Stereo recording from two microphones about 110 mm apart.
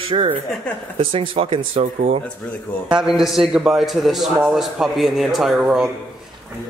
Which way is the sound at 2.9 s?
5° right (ahead or behind).